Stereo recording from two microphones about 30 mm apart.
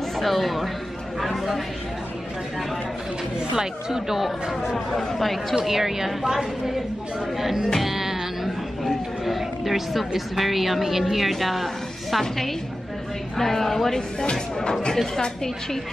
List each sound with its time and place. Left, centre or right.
0.1 s speech: centre
3.3 s speech: right
4.2 s speech: centre
5.7 s a woman's voice: centre
7.8 s music: centre
8.8 s a woman's voice: centre
14.3 s speech: left